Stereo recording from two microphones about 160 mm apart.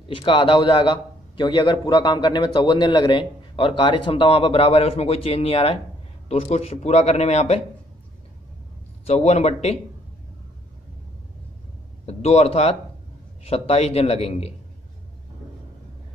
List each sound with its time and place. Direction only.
0.1 s a man's voice: 35° left (ahead or behind)
9.0 s a man's voice: 40° left (ahead or behind)
12.1 s a man's voice: 40° left (ahead or behind)